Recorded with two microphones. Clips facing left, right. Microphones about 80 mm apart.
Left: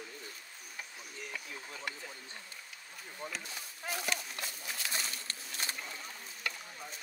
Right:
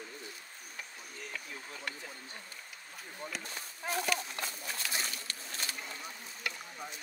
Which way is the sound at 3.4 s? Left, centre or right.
Right.